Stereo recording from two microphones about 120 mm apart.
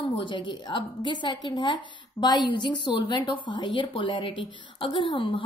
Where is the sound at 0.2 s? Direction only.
45° left (ahead or behind).